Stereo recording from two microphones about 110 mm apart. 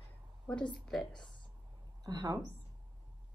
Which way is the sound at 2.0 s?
35° right (ahead or behind).